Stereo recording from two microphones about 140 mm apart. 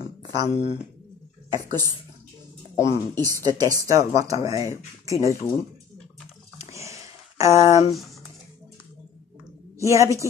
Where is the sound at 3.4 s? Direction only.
25° right (ahead or behind).